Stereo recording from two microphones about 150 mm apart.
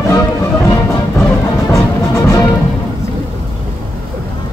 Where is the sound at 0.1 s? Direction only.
20° left (ahead or behind).